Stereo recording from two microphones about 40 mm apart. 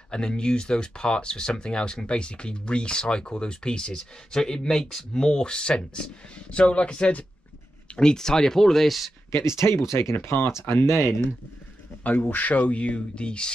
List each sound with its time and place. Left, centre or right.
0.1 s speech: left
7.9 s speech: centre
9.7 s speech: left
12.0 s speech: left